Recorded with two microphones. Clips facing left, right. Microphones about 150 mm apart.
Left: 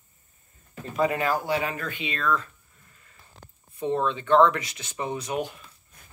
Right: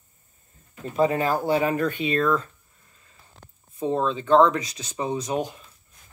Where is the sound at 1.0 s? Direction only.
30° right (ahead or behind).